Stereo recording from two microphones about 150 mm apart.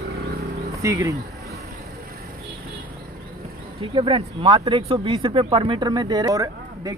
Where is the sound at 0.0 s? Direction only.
90° right.